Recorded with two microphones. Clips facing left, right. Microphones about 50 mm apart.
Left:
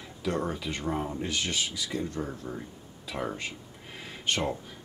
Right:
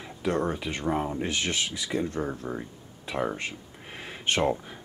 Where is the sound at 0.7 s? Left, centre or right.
Right; by 3.3 s centre.